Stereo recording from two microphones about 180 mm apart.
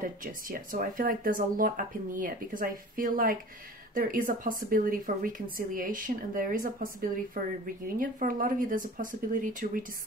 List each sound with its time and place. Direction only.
0.0 s speech: 50° right (ahead or behind)